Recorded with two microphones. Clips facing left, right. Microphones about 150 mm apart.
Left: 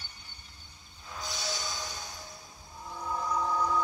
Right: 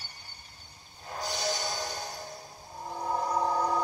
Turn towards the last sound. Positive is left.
turn(degrees=-40)  # may be behind; listen again after turning